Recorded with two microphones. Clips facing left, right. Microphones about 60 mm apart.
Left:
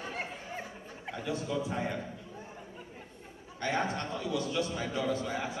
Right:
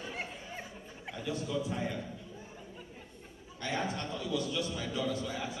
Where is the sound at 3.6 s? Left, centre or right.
Left.